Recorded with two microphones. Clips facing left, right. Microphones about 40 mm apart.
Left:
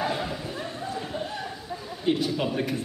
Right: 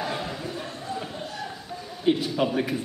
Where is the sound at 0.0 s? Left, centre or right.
Centre.